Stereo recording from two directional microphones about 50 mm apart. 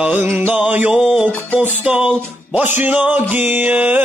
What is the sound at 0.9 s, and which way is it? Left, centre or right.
Music, centre.